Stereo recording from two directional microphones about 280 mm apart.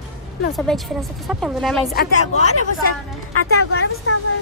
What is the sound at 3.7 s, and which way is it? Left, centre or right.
Speech, left.